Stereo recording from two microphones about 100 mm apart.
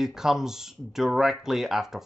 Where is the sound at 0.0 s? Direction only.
5° right (ahead or behind).